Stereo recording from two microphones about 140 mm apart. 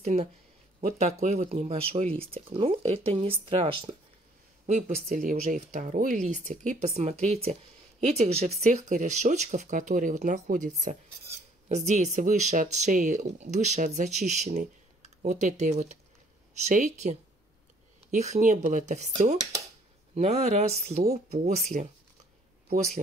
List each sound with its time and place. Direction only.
0.0 s speech: 50° right (ahead or behind)
4.6 s speech: 55° right (ahead or behind)
5.0 s speech: 70° right (ahead or behind)